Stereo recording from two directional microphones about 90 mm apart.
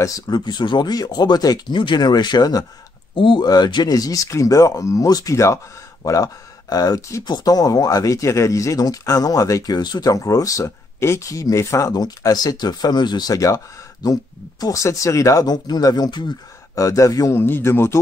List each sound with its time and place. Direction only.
0.3 s speech: 55° left (ahead or behind)
3.2 s speech: 70° left (ahead or behind)
3.4 s speech: 50° left (ahead or behind); by 11.9 s 35° left (ahead or behind)
11.9 s speech: 45° left (ahead or behind)
14.6 s speech: 40° left (ahead or behind)
15.4 s speech: 50° left (ahead or behind)
16.7 s speech: 35° left (ahead or behind)
17.4 s speech: 25° left (ahead or behind)